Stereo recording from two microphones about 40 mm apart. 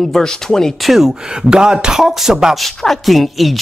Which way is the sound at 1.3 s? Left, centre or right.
Centre.